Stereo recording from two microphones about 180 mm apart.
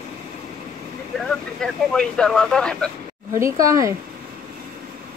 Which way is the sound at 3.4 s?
15° right (ahead or behind).